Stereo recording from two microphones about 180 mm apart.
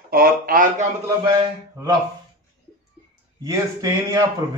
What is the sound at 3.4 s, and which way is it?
Speech, 20° right (ahead or behind).